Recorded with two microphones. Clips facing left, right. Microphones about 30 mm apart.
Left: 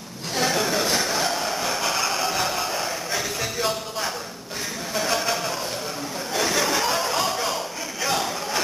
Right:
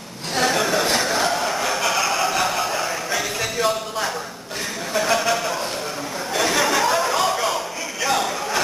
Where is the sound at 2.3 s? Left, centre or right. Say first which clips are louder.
Right 4 dB; centre.